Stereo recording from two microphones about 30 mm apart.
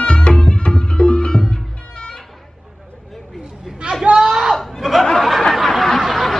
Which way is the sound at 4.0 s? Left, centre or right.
Right.